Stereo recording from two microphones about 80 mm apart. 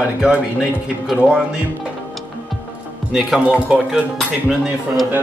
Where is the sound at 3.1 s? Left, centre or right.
Centre.